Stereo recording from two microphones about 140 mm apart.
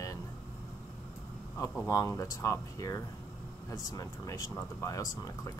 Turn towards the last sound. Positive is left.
turn(degrees=25)  # may be behind; listen again after turning